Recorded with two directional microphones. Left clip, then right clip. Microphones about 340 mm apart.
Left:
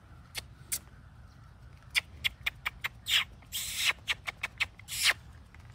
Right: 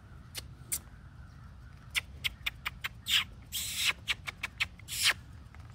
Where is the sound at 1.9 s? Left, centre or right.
Centre.